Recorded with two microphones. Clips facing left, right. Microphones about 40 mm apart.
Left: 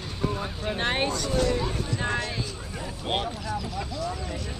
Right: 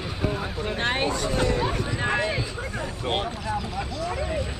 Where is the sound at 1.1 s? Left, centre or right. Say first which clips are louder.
Right 1 dB; right; by 3.2 s centre.